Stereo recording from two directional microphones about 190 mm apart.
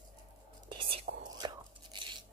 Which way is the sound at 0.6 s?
30° right (ahead or behind).